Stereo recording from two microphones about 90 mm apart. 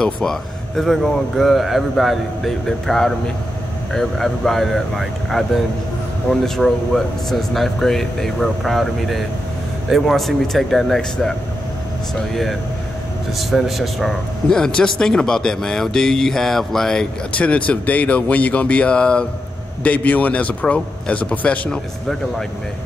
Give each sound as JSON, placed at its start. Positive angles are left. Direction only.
{"t": 0.0, "sound": "speech", "side_deg": 5}
{"t": 13.4, "sound": "a man's voice", "side_deg": 0}